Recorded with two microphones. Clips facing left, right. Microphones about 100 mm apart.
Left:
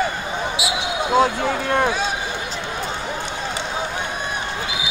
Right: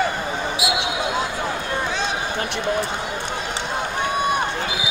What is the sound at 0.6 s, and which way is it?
Basketball bounce, 45° right (ahead or behind).